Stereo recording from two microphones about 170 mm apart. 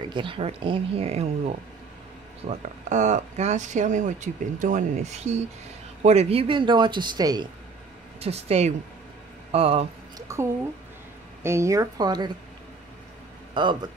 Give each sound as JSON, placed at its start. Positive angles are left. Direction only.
{"t": 0.0, "sound": "speech", "side_deg": -30}
{"t": 8.2, "sound": "speech", "side_deg": -40}
{"t": 10.1, "sound": "speech", "side_deg": -15}
{"t": 11.4, "sound": "speech", "side_deg": -15}
{"t": 13.6, "sound": "speech", "side_deg": -25}